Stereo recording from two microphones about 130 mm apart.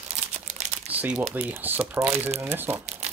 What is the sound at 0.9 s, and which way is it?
Speech, 10° right (ahead or behind).